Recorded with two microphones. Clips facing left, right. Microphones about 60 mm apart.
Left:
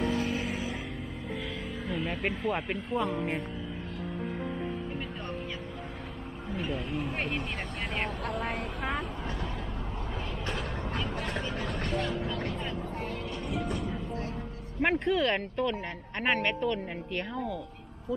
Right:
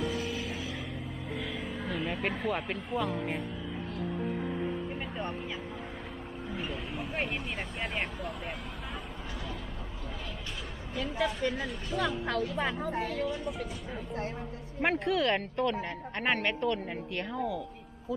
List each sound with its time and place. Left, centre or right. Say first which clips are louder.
0.0 s vehicle: left 4 dB; left
1.6 s speech: even; centre
6.5 s speech: left 5 dB; centre
8.2 s speech: left 5 dB; left
10.4 s vehicle: left 7 dB; left
11.5 s speech: left 2 dB; left
12.5 s speech: right 4 dB; right
14.8 s speech: left 2 dB; centre